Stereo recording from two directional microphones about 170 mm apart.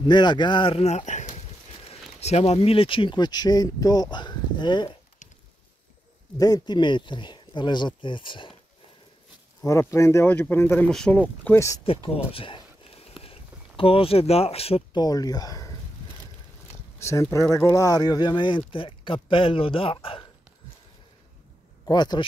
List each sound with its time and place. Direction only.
0.0 s speech: 25° left (ahead or behind)
6.3 s speech: 20° left (ahead or behind)
9.7 s speech: 20° left (ahead or behind)
11.8 s speech: 35° left (ahead or behind)
12.3 s a sound: 30° left (ahead or behind)
13.2 s speech: 35° left (ahead or behind)
17.0 s speech: 15° left (ahead or behind)
21.8 s speech: 25° left (ahead or behind)